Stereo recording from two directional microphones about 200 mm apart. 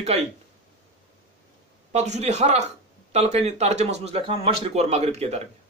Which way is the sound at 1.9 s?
35° right (ahead or behind).